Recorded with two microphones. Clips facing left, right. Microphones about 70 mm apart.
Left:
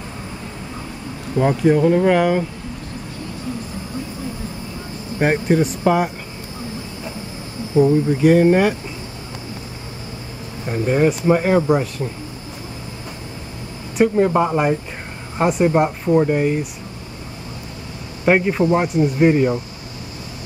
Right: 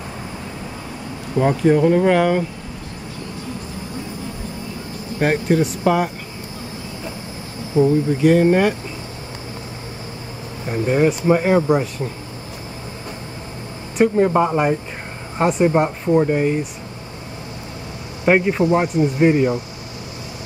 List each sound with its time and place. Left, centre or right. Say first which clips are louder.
1.4 s speech: even; centre
5.2 s speech: left 1 dB; centre
7.7 s speech: left 1 dB; centre
8.2 s speech: left 1 dB; centre
10.7 s speech: even; centre
13.9 s speech: even; centre
18.2 s a man's voice: even; centre